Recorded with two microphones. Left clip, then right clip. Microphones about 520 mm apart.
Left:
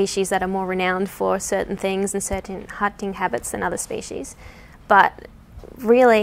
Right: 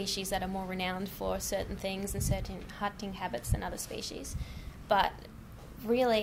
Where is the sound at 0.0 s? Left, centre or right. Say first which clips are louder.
Left 14 dB; left.